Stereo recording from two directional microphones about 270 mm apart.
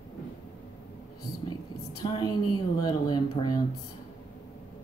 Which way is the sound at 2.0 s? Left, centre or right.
Centre.